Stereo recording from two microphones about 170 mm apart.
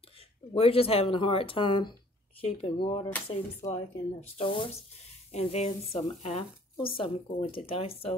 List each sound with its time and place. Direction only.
0.5 s speech: 35° left (ahead or behind)
3.6 s speech: 20° left (ahead or behind)
4.4 s speech: 30° left (ahead or behind)